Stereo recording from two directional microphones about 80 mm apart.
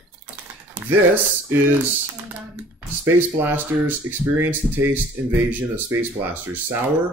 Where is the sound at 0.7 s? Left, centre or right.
Right.